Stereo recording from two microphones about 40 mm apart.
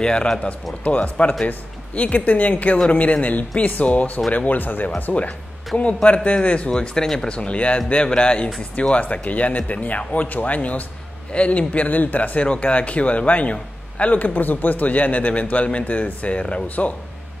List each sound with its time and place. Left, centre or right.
0.0 s speech: left
0.8 s speech: left
4.5 s speech: left
5.7 s speech: left
6.7 s speech: left
8.9 s speech: left
16.6 s speech: left